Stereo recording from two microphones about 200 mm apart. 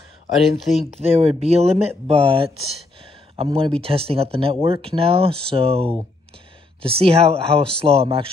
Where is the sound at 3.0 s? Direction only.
30° right (ahead or behind).